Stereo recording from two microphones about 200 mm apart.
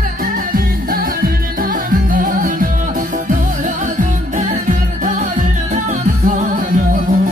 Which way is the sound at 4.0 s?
40° right (ahead or behind).